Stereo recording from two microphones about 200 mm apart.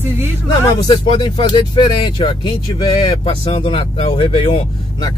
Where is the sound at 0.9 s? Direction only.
20° left (ahead or behind).